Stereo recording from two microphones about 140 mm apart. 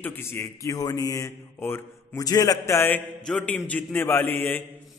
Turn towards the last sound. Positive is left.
turn(degrees=15)  # may be behind; listen again after turning